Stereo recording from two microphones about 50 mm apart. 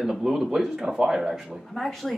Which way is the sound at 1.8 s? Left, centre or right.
Centre.